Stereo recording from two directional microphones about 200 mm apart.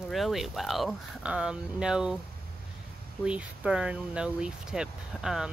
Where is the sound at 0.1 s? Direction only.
Centre (ahead or behind).